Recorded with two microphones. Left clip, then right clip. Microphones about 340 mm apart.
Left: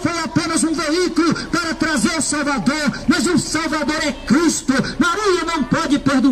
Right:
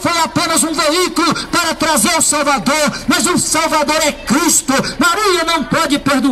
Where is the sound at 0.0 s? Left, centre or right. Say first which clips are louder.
Right 6 dB; centre.